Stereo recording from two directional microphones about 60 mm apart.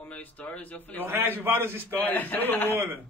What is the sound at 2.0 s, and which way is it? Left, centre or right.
Speech, left.